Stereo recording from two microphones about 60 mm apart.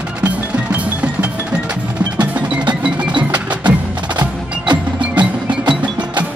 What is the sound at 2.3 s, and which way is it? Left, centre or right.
Tubular bells, centre.